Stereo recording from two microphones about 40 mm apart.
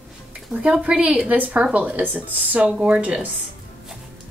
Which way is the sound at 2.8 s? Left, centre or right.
Right.